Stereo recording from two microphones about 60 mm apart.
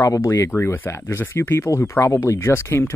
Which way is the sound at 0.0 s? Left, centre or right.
Left.